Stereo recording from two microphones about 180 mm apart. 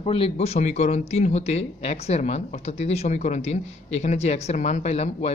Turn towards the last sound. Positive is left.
turn(degrees=35)  # may be behind; listen again after turning